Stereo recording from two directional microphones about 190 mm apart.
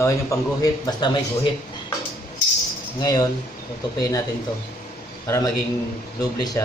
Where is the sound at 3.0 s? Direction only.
20° left (ahead or behind).